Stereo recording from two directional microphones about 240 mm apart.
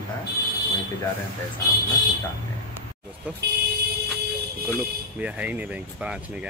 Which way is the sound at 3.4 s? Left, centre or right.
Right.